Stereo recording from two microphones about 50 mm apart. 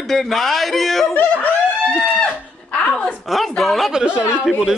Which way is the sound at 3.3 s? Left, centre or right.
Centre.